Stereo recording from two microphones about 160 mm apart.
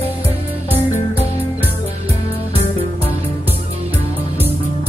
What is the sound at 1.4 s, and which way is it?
Music, 10° right (ahead or behind).